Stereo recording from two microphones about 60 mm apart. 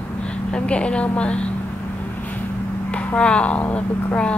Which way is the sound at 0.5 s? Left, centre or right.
Centre.